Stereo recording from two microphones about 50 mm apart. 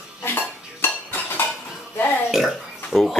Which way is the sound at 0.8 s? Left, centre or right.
Left.